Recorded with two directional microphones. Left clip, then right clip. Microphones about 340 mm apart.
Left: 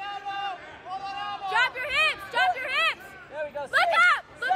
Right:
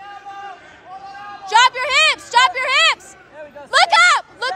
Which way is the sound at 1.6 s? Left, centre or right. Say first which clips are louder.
Right 11 dB; centre.